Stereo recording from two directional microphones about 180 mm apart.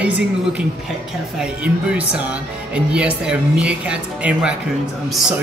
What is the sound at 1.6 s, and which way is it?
A woman's voice, 5° right (ahead or behind).